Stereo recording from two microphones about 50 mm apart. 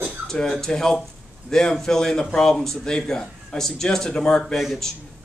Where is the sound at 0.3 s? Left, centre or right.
Centre.